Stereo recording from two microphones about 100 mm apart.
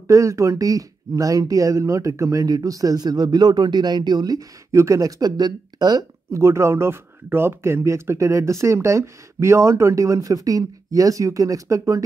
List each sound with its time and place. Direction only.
0.1 s speech: 30° right (ahead or behind)
6.3 s speech: 30° right (ahead or behind)